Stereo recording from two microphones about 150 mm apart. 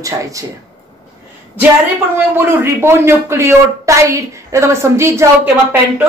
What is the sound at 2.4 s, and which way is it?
A man's voice, 15° right (ahead or behind).